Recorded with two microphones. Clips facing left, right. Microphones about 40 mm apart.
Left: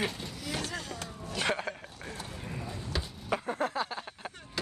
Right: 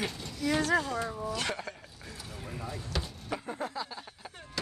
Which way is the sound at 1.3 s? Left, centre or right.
Left.